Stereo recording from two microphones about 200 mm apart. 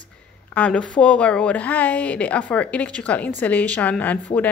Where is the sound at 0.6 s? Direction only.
5° left (ahead or behind).